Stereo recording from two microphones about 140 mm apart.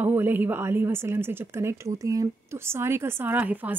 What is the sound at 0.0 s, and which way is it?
A woman's voice, 15° right (ahead or behind).